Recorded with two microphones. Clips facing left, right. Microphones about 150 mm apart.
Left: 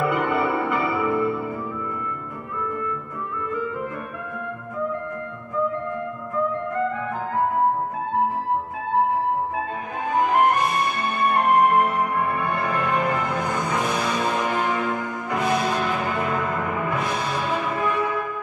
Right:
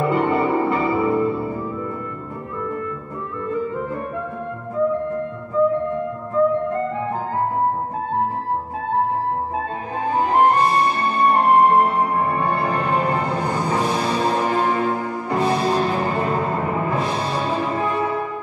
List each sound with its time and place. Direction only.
0.0 s music: 35° right (ahead or behind)
6.4 s music: 30° right (ahead or behind)
10.0 s music: 30° right (ahead or behind)